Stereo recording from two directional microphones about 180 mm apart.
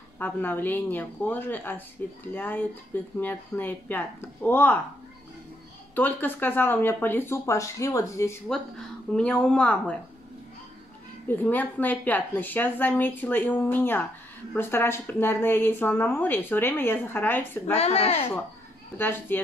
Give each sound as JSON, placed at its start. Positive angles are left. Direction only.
{"t": 0.2, "sound": "a woman's voice", "side_deg": 10}
{"t": 5.9, "sound": "a woman's voice", "side_deg": 10}
{"t": 8.5, "sound": "speech", "side_deg": 5}
{"t": 11.2, "sound": "a woman's voice", "side_deg": 10}
{"t": 17.7, "sound": "speech", "side_deg": 35}
{"t": 18.9, "sound": "a woman's voice", "side_deg": 10}